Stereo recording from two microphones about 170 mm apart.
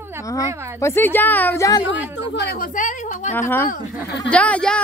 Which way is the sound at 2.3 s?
70° left (ahead or behind).